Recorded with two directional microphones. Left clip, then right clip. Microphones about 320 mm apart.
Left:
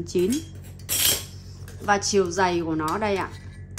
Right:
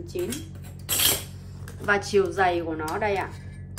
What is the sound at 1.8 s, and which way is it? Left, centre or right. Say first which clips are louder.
A woman's voice: left 1 dB; centre.